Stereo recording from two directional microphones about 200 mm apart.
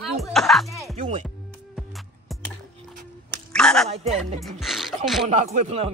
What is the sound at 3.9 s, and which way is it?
Music, 30° right (ahead or behind).